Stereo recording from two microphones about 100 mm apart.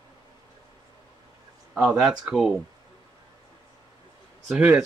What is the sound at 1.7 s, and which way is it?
Speech, 5° right (ahead or behind).